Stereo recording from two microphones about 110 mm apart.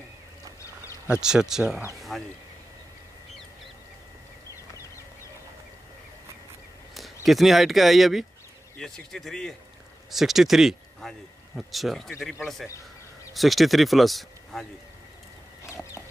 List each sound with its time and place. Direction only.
1.2 s speech: 5° right (ahead or behind)
7.2 s speech: centre (ahead or behind)
15.6 s chicken: 25° left (ahead or behind)